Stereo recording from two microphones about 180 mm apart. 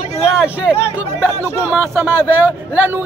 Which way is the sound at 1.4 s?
15° right (ahead or behind).